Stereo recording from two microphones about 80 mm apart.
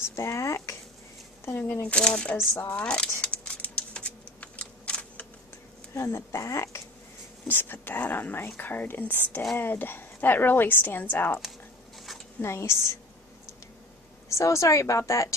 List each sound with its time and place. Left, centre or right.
0.1 s speech: left
1.6 s speech: centre
2.3 s speech: left
2.7 s speech: centre
3.2 s typing: centre
5.9 s speech: left
7.4 s speech: left
12.4 s speech: left
14.3 s speech: left